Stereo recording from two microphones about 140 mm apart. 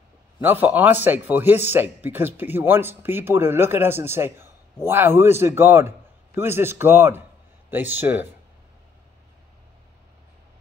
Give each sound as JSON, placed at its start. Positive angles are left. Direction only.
{"t": 0.4, "sound": "a man's voice", "side_deg": -15}